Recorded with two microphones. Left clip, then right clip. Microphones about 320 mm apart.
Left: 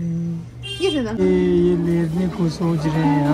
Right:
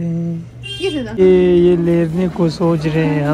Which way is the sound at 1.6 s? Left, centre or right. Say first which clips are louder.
Right 6 dB; left.